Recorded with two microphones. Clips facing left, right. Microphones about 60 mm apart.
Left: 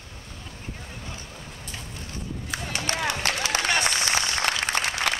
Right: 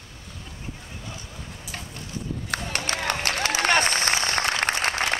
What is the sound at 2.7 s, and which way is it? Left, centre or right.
Run, right.